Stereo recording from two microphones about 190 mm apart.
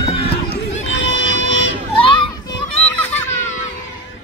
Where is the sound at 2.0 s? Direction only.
25° left (ahead or behind).